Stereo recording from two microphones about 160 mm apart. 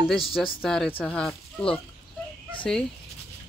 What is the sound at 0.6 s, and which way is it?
Speech, 5° left (ahead or behind).